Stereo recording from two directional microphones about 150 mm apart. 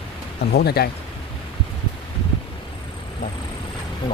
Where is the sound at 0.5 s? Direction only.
90° left.